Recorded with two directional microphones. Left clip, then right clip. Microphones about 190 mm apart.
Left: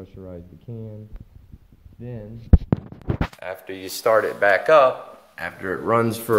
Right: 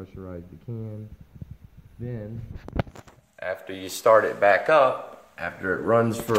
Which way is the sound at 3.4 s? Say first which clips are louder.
Even; 5° left (ahead or behind).